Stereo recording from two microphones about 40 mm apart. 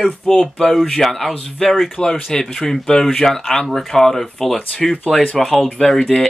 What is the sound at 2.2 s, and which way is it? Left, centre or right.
Speech, centre.